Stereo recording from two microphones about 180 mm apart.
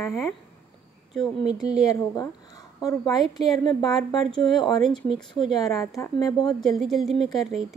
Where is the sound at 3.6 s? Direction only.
20° left (ahead or behind).